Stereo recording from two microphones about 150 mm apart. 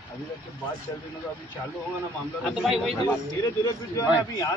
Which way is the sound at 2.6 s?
Centre (ahead or behind).